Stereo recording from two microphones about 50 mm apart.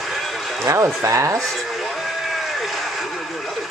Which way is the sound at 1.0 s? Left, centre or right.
Right.